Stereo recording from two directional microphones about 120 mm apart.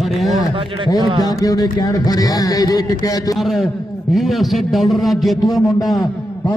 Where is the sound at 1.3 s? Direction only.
30° left (ahead or behind).